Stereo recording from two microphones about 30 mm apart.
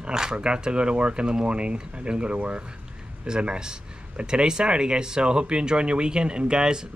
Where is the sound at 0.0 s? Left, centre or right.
Right.